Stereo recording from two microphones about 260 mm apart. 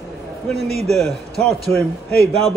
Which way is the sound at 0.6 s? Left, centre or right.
Right.